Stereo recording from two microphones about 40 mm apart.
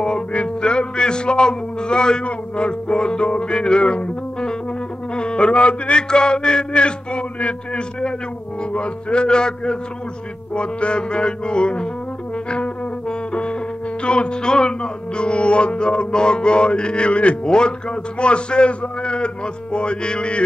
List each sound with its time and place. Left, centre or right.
0.0 s music: left
12.4 s trombone: left
13.3 s music: left